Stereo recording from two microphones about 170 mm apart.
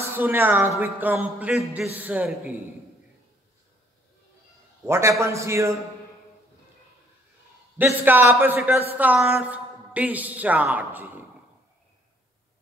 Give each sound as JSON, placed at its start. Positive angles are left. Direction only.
{"t": 0.1, "sound": "a woman's voice", "side_deg": -10}
{"t": 4.8, "sound": "a woman's voice", "side_deg": -15}
{"t": 7.7, "sound": "a woman's voice", "side_deg": -10}